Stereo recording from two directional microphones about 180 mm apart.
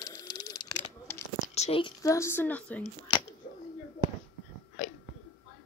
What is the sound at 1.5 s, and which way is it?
Speech, 35° left (ahead or behind).